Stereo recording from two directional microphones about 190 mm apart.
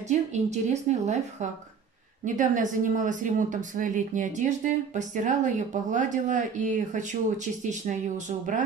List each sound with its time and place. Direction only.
0.1 s a woman's voice: 35° right (ahead or behind)